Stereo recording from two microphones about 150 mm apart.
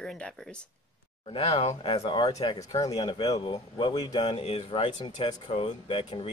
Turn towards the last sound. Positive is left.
turn(degrees=35)  # may be behind; listen again after turning